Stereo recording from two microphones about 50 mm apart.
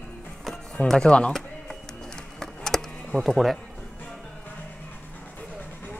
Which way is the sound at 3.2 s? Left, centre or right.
Centre.